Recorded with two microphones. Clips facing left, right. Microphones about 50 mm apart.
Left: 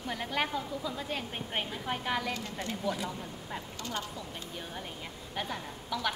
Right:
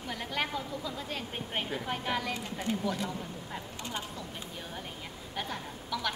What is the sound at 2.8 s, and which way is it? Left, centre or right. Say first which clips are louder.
Speech: even; centre.